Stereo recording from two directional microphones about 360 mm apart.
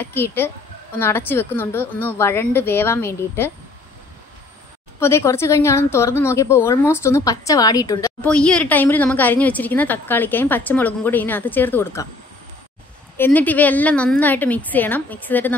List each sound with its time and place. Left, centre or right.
0.0 s a woman's voice: centre
5.0 s a woman's voice: centre
13.2 s a woman's voice: centre